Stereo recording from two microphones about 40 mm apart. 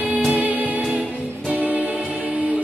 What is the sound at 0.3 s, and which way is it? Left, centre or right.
Music, right.